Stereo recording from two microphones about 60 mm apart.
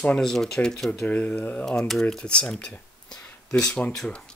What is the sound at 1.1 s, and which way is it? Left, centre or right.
Speech, left.